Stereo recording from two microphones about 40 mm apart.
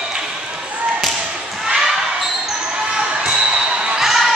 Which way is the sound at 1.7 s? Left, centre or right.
Centre.